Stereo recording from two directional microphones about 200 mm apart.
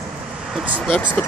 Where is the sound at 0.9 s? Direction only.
10° left (ahead or behind).